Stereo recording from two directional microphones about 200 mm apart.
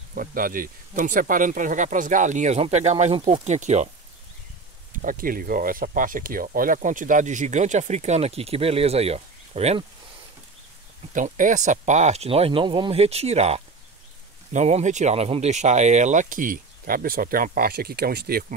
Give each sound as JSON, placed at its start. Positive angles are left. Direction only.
{"t": 0.1, "sound": "speech", "side_deg": -45}
{"t": 4.9, "sound": "speech", "side_deg": -45}
{"t": 11.1, "sound": "speech", "side_deg": -40}